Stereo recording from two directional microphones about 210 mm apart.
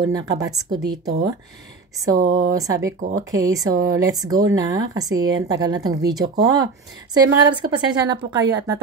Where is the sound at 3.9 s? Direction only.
20° right (ahead or behind).